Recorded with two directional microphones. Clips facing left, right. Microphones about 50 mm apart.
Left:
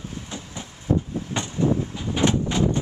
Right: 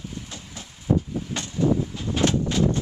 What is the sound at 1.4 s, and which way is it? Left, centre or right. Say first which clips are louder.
Vehicle: left 4 dB; left.